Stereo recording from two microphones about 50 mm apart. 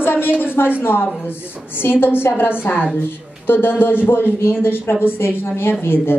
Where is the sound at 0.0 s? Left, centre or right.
Left.